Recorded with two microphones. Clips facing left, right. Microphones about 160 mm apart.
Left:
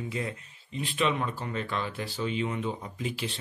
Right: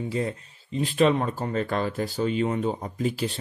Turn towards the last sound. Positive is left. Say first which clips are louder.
# right 7 dB
turn(degrees=-40)  # may be behind; listen again after turning